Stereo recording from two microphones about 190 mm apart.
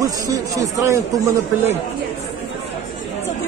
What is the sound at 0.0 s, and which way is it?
Speech, 20° right (ahead or behind).